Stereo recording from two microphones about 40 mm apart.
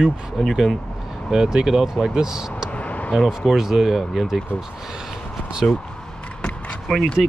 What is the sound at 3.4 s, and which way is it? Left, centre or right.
Speech, centre.